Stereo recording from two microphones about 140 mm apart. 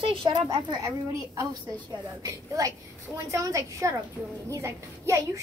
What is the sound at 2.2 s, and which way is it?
A woman's voice, 25° right (ahead or behind).